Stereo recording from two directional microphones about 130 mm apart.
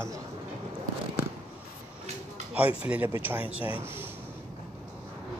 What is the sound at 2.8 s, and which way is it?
Speech, 10° right (ahead or behind).